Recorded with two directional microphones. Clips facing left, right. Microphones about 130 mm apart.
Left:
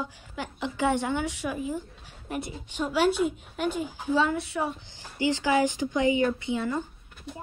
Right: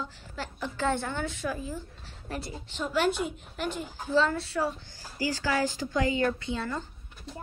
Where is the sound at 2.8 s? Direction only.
Centre (ahead or behind).